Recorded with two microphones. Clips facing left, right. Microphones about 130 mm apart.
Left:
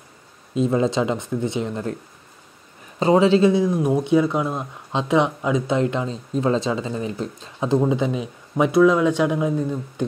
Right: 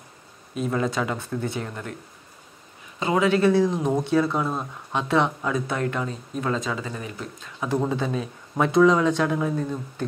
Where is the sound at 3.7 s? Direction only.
10° left (ahead or behind); by 7.8 s 25° left (ahead or behind).